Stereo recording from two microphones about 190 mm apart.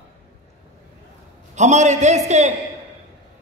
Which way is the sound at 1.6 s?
40° right (ahead or behind).